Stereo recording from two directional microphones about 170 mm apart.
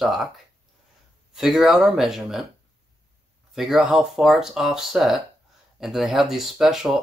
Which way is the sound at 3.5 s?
Centre (ahead or behind).